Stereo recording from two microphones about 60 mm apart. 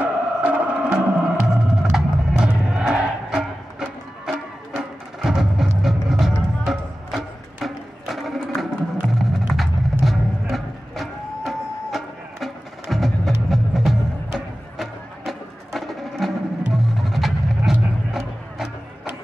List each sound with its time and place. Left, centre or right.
0.0 s music: centre